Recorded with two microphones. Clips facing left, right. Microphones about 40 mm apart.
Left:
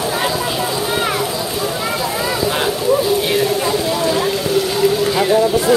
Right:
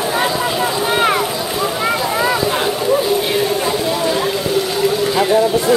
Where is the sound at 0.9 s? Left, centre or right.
Right.